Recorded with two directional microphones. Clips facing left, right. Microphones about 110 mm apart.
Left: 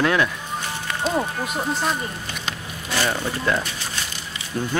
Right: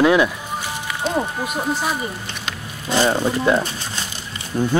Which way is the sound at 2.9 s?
25° right (ahead or behind).